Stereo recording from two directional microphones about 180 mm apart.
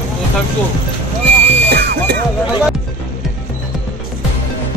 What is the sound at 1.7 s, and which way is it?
Music, 60° right (ahead or behind).